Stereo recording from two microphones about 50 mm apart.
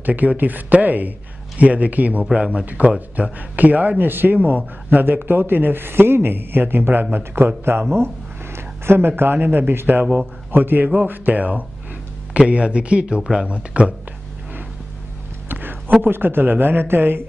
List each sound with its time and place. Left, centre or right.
0.0 s speech: right
2.3 s speech: centre
2.6 s speech: right
8.8 s speech: right
15.4 s a sound: right
16.0 s speech: right